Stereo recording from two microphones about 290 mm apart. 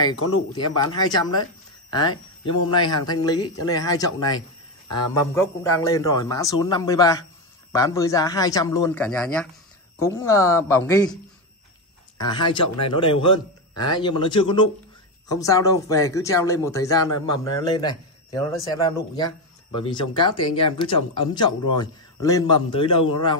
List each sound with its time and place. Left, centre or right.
0.8 s speech: centre
12.2 s speech: centre